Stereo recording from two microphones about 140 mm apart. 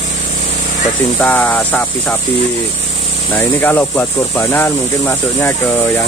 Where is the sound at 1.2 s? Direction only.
15° left (ahead or behind).